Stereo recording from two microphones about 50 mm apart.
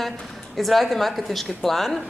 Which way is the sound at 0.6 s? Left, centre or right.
Centre.